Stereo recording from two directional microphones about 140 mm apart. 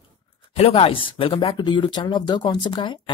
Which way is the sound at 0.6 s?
45° left (ahead or behind).